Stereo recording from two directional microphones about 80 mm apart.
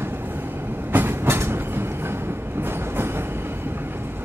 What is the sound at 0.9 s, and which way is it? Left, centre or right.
Train, right.